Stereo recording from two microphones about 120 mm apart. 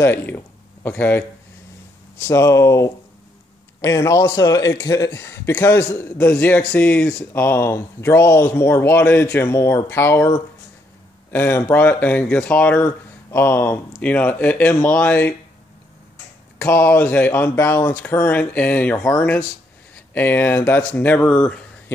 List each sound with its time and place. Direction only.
0.0 s a man's voice: 15° left (ahead or behind)
11.3 s a man's voice: 20° left (ahead or behind)
16.5 s speech: 15° left (ahead or behind)